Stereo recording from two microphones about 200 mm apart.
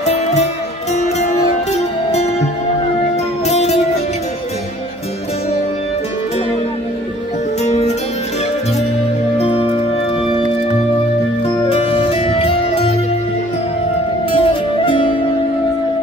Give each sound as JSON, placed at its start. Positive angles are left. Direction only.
{"t": 0.1, "sound": "music", "side_deg": 35}
{"t": 1.7, "sound": "music", "side_deg": 35}
{"t": 3.4, "sound": "music", "side_deg": 35}
{"t": 7.6, "sound": "music", "side_deg": 35}
{"t": 9.4, "sound": "music", "side_deg": 30}
{"t": 11.7, "sound": "music", "side_deg": 30}
{"t": 14.3, "sound": "music", "side_deg": 25}